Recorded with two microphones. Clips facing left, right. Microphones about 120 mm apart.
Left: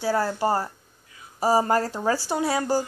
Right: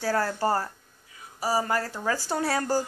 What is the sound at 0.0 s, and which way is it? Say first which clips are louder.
Speech: left 2 dB; 20° left (ahead or behind).